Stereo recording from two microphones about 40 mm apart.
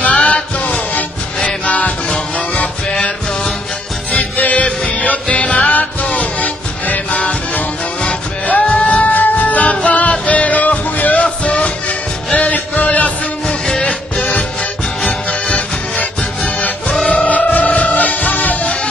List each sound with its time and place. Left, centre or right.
0.0 s music: left
4.1 s music: left
5.7 s music: left
13.5 s music: left
15.0 s music: left
17.3 s music: left